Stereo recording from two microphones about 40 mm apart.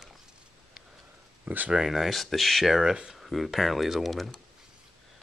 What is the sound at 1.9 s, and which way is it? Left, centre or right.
Speech, centre.